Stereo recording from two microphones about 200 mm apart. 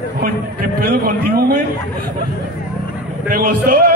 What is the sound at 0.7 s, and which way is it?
Speech, 50° right (ahead or behind).